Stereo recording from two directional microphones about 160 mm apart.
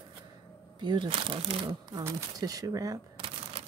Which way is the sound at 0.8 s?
30° right (ahead or behind).